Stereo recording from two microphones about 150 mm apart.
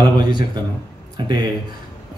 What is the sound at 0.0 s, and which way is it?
A man's voice, 30° right (ahead or behind).